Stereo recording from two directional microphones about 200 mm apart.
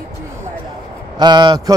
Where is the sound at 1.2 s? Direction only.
20° right (ahead or behind).